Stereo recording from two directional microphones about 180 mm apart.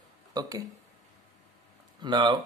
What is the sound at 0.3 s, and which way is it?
Speech, 20° right (ahead or behind).